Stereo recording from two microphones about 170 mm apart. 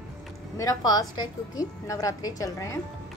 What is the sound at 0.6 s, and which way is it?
A woman's voice, 20° left (ahead or behind).